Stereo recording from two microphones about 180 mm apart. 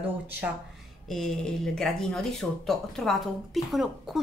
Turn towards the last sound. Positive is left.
turn(degrees=0)  # may be behind; listen again after turning